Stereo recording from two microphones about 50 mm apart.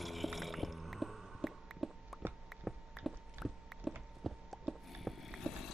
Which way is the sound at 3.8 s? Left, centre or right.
Left.